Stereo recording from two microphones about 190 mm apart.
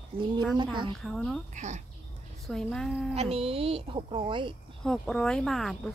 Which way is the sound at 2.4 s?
Centre (ahead or behind).